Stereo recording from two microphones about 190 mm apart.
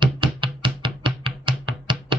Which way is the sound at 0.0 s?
25° right (ahead or behind).